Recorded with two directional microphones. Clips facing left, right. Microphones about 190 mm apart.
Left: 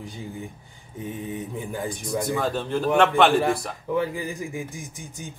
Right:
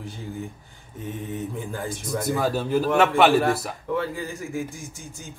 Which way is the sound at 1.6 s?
15° left (ahead or behind).